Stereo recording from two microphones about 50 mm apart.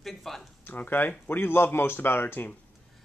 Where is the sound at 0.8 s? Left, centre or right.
Left.